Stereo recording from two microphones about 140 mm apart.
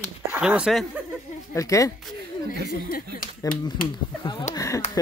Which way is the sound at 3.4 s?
25° left (ahead or behind).